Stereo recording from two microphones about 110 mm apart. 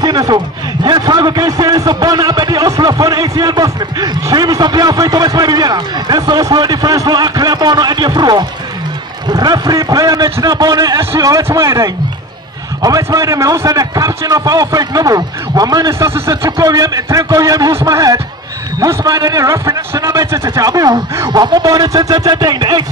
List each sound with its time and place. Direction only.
0.0 s a man's voice: 35° right (ahead or behind)